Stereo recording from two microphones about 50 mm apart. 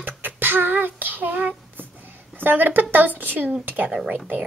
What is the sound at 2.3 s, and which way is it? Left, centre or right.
A child's voice, right.